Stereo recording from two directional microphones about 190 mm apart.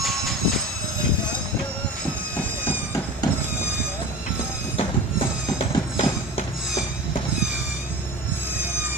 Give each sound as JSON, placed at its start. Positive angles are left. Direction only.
{"t": 0.0, "sound": "train", "side_deg": 0}
{"t": 2.3, "sound": "train", "side_deg": 10}
{"t": 4.7, "sound": "a sound", "side_deg": 30}